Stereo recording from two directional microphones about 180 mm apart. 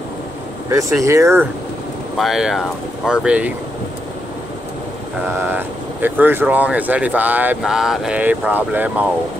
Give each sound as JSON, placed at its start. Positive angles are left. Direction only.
{"t": 0.7, "sound": "speech", "side_deg": -15}
{"t": 2.1, "sound": "speech", "side_deg": 0}
{"t": 5.4, "sound": "speech", "side_deg": -10}